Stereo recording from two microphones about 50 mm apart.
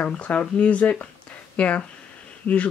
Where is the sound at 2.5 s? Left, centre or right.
Left.